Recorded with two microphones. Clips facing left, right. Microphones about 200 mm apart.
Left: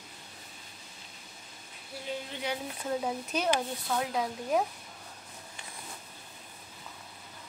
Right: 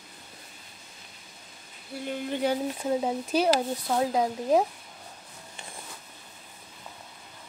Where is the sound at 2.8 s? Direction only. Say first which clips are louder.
Right 3 dB; 30° right (ahead or behind).